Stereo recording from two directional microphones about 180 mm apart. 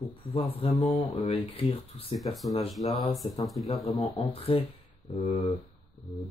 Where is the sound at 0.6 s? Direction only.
35° left (ahead or behind).